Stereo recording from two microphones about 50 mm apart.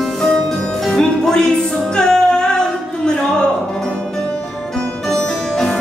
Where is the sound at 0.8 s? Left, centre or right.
Centre.